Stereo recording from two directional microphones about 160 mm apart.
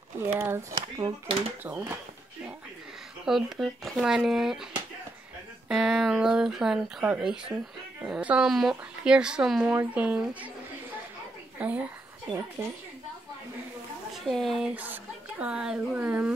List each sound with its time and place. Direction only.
0.2 s speech: 15° right (ahead or behind)
1.6 s speech: 10° right (ahead or behind)
3.3 s speech: centre (ahead or behind)
11.5 s speech: 10° right (ahead or behind)
14.1 s speech: centre (ahead or behind)